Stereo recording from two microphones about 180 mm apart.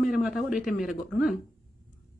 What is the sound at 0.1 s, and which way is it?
Speech, centre (ahead or behind).